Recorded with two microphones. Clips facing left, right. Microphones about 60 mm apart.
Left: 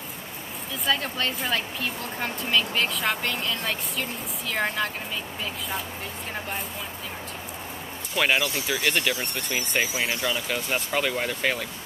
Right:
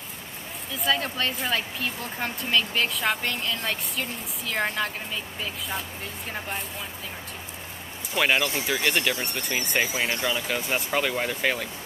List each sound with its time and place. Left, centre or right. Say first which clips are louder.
0.8 s speech: right 1 dB; centre
8.2 s speech: even; centre
10.2 s speech: even; centre